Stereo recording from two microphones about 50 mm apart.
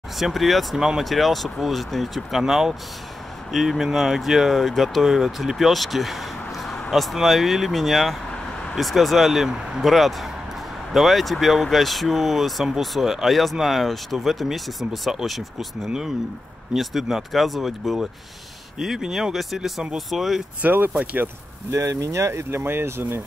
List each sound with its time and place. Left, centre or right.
0.2 s speech: centre
15.8 s speech: centre
16.7 s speech: centre
20.6 s speech: right
20.9 s speech: right
21.6 s speech: right